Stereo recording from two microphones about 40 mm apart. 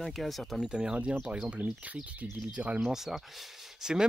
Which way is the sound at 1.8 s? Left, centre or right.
Right.